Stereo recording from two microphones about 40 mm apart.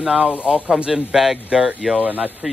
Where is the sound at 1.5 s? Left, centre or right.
Right.